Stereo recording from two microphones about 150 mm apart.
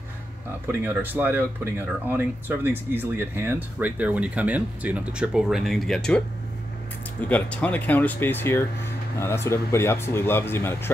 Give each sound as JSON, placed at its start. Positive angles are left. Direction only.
{"t": 0.7, "sound": "speech", "side_deg": -15}
{"t": 7.2, "sound": "speech", "side_deg": 10}